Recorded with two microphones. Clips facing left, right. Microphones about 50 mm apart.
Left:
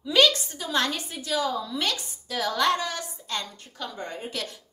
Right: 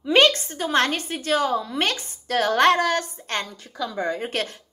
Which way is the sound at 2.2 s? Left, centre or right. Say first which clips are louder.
Right 7 dB; right.